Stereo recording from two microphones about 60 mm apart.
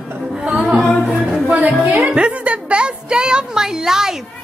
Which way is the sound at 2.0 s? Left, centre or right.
Centre.